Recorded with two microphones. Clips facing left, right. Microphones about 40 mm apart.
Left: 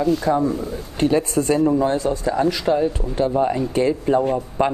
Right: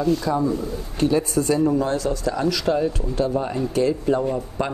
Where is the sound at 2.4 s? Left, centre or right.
Centre.